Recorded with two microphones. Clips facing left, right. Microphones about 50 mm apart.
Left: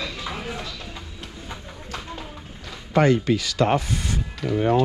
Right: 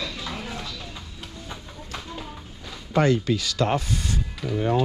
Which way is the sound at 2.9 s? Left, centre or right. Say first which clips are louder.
Left 2 dB; left.